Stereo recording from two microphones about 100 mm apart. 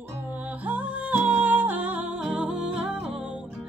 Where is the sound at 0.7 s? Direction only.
15° right (ahead or behind).